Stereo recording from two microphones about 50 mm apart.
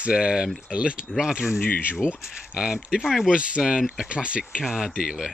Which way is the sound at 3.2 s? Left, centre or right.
Centre.